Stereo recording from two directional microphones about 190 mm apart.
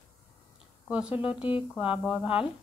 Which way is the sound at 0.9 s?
5° right (ahead or behind).